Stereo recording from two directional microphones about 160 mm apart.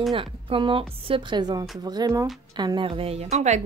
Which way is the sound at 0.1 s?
35° right (ahead or behind).